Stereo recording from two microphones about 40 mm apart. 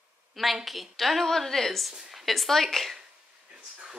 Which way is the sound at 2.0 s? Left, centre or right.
Centre.